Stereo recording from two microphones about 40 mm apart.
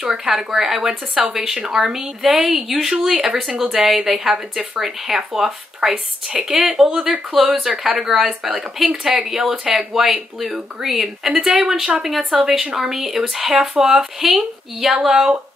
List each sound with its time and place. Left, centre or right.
0.0 s a woman's voice: centre